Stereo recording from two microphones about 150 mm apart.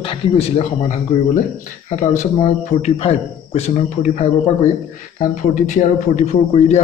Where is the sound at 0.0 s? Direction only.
35° left (ahead or behind).